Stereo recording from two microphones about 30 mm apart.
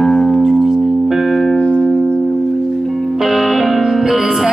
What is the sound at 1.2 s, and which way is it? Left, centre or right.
Music, centre.